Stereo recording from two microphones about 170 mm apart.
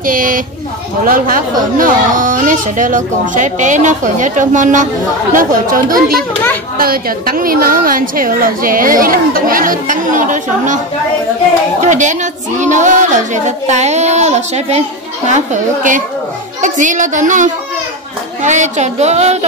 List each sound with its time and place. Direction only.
0.0 s a woman's voice: 50° right (ahead or behind)
11.8 s a woman's voice: 45° right (ahead or behind)